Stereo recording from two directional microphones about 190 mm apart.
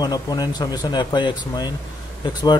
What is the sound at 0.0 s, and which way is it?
Speech, 20° left (ahead or behind).